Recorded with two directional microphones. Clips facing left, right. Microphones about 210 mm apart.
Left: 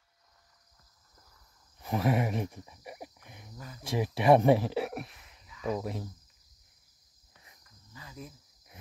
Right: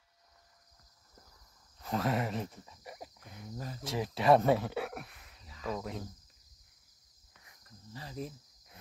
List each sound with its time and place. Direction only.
1.8 s a sound: 15° left (ahead or behind)
3.5 s speech: 30° right (ahead or behind)
3.9 s speech: 15° left (ahead or behind)
7.6 s cricket: 30° right (ahead or behind)